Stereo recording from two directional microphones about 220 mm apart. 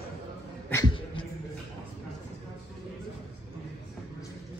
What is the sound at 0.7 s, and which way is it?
Cat, 20° left (ahead or behind).